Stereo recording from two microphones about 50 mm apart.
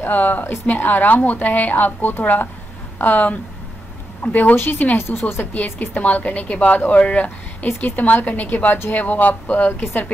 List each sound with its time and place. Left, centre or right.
0.0 s a woman's voice: left
9.7 s speech: left